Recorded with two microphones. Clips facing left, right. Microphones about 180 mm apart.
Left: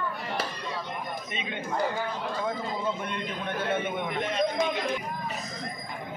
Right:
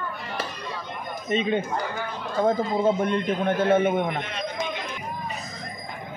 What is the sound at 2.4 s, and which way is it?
A man's voice, 50° right (ahead or behind).